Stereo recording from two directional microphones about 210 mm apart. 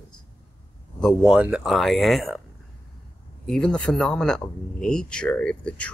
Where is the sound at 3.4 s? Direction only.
Centre (ahead or behind).